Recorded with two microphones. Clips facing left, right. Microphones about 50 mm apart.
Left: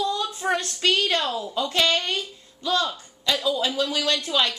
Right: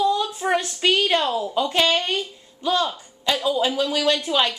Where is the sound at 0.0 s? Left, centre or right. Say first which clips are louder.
Right 4 dB; centre.